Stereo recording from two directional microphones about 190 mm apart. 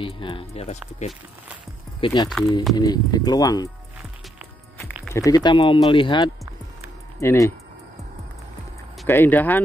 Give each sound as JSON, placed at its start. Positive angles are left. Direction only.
{"t": 0.0, "sound": "speech", "side_deg": 25}
{"t": 5.1, "sound": "speech", "side_deg": 20}
{"t": 7.2, "sound": "speech", "side_deg": 15}
{"t": 9.0, "sound": "speech", "side_deg": 10}